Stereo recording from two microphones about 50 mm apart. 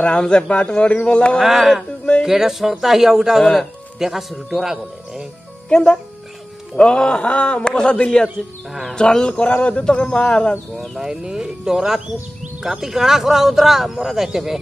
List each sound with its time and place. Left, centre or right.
0.0 s a man's voice: left
1.4 s speech: centre
5.7 s a man's voice: centre
11.0 s speech: centre